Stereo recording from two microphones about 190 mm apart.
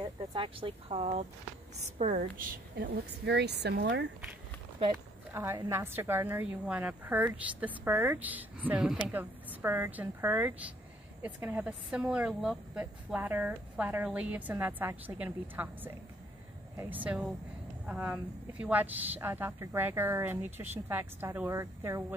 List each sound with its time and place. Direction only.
0.0 s a woman's voice: 25° right (ahead or behind); by 2.6 s 45° right (ahead or behind)
2.8 s speech: 60° right (ahead or behind)
5.3 s a woman's voice: 15° right (ahead or behind)